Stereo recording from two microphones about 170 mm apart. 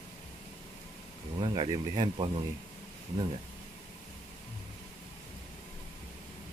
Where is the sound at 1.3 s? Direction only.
30° right (ahead or behind).